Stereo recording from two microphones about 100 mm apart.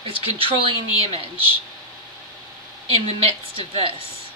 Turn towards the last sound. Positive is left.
turn(degrees=-70)  # may be behind; listen again after turning